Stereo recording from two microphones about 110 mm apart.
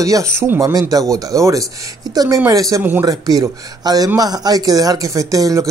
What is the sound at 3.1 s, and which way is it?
Speech, 35° right (ahead or behind).